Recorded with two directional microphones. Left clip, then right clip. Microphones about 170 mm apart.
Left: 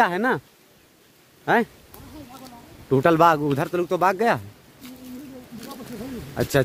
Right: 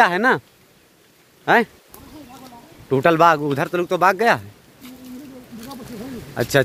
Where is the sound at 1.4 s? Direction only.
10° left (ahead or behind).